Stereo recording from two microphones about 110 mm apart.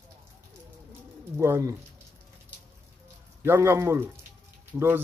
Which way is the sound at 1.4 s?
25° right (ahead or behind).